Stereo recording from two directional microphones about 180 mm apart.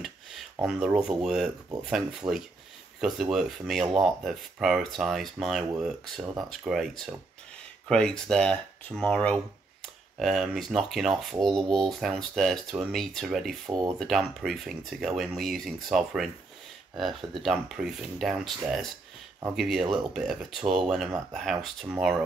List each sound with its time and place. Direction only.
0.6 s speech: 5° right (ahead or behind)
13.7 s speech: 15° right (ahead or behind)
13.9 s speech: centre (ahead or behind)